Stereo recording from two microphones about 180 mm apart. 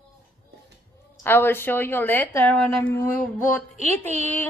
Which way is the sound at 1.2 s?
10° left (ahead or behind).